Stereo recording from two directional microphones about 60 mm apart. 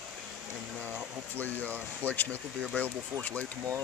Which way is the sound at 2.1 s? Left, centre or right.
Left.